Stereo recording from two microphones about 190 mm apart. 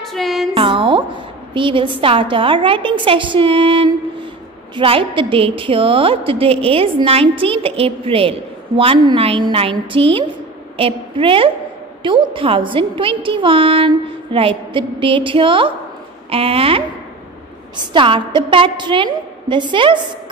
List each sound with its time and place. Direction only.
0.0 s music: centre (ahead or behind)
0.6 s a woman's voice: 25° right (ahead or behind)